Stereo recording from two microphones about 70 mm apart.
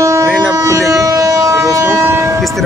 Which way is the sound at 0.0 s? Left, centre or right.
Right.